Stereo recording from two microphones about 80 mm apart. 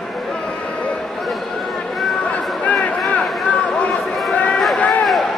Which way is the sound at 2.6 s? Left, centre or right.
Centre.